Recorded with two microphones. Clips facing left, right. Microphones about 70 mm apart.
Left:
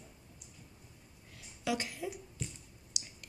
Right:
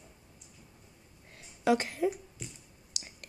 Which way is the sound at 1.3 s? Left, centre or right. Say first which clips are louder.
Right 8 dB; right.